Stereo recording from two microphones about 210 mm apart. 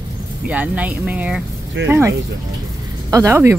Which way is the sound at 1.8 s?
60° right (ahead or behind).